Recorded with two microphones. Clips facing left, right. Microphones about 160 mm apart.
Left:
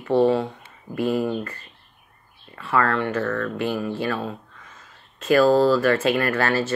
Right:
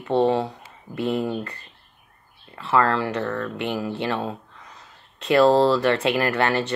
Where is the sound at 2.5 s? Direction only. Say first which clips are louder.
Right 1 dB; 25° right (ahead or behind).